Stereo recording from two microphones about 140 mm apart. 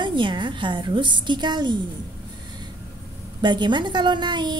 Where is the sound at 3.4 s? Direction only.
35° right (ahead or behind).